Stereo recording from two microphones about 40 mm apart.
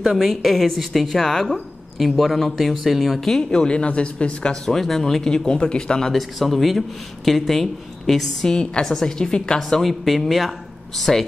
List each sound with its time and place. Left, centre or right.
0.0 s a woman's voice: centre
3.3 s speech: centre
4.6 s speech: centre
6.1 s a woman's voice: centre
8.5 s speech: centre
9.6 s a woman's voice: centre